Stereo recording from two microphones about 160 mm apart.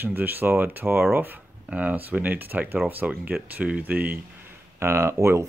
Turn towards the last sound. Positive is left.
turn(degrees=-15)  # may be behind; listen again after turning